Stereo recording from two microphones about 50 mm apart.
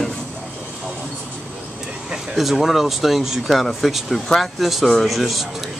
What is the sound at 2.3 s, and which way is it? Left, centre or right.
Speech, centre.